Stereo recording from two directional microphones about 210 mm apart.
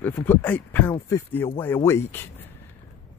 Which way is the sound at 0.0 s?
10° left (ahead or behind).